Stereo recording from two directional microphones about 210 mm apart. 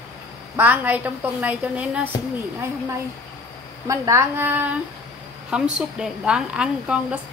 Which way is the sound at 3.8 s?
15° right (ahead or behind).